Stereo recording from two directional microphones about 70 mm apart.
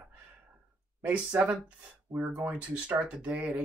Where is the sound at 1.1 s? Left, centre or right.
Centre.